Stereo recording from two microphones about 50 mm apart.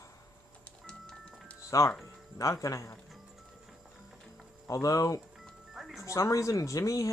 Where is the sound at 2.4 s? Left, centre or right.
Left.